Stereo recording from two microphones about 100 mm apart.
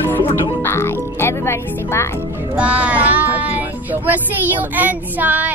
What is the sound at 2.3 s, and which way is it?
Speech, 15° right (ahead or behind).